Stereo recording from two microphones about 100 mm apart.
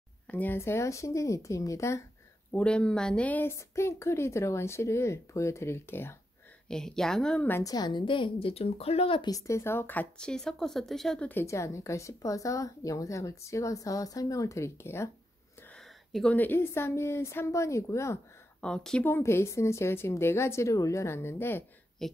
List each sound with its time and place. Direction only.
0.3 s speech: 15° left (ahead or behind)
0.6 s a woman's voice: 30° left (ahead or behind)
2.5 s a woman's voice: 10° left (ahead or behind)
3.5 s speech: 25° left (ahead or behind)
6.7 s speech: 5° left (ahead or behind)
7.6 s a woman's voice: 45° left (ahead or behind); by 9.2 s 80° left
9.2 s a woman's voice: 35° left (ahead or behind); by 11.2 s 5° left (ahead or behind)
11.4 s a woman's voice: 30° left (ahead or behind)
15.7 s a sound: 5° left (ahead or behind)
16.3 s speech: 20° left (ahead or behind)
18.6 s a woman's voice: 5° left (ahead or behind)
19.0 s speech: 25° left (ahead or behind)
22.0 s speech: 5° left (ahead or behind)